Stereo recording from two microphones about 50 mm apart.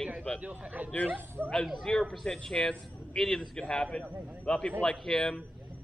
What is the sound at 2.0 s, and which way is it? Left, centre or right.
A man's voice, centre.